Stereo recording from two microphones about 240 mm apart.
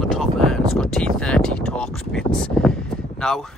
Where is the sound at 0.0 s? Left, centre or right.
Centre.